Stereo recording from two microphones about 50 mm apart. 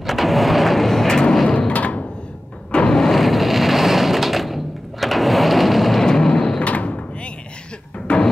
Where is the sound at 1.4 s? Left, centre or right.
Left.